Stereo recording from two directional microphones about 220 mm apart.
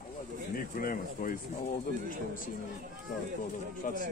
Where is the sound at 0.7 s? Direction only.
40° left (ahead or behind).